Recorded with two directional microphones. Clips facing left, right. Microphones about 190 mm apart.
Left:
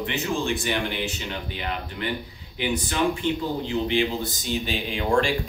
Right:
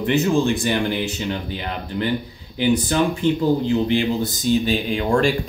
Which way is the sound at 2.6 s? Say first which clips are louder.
Right 6 dB; 35° right (ahead or behind).